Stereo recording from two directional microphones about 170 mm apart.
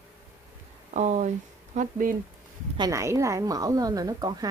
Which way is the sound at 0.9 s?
45° right (ahead or behind).